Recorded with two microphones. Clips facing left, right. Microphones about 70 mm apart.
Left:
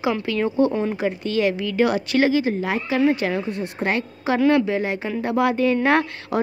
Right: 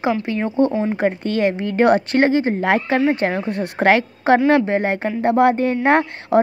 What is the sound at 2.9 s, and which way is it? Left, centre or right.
Speech, right.